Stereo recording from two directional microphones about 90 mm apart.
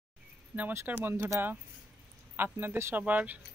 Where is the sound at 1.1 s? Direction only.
30° right (ahead or behind).